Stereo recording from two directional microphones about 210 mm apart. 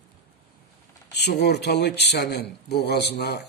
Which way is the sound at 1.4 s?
55° left (ahead or behind).